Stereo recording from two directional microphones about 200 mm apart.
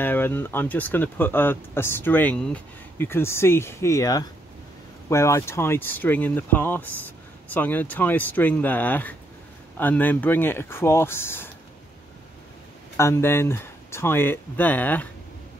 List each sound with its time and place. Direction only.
0.0 s speech: 10° left (ahead or behind)
12.9 s speech: 15° left (ahead or behind)